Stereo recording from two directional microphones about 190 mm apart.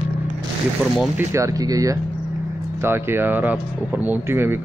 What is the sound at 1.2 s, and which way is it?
Speech, 15° right (ahead or behind).